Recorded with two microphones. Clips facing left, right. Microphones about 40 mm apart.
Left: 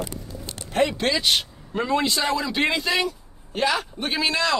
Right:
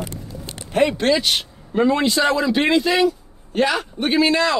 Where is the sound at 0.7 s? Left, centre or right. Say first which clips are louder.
Right 5 dB; centre.